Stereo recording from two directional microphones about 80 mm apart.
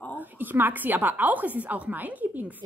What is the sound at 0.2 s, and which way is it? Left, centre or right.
A woman's voice, right.